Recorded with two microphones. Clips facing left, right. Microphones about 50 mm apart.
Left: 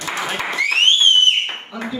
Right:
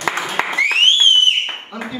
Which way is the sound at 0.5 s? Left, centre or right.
Right.